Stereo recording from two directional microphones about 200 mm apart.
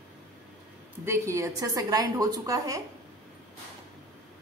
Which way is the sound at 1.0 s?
15° right (ahead or behind).